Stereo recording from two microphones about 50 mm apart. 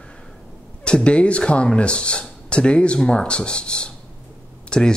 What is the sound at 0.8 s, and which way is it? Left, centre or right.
Speech, left.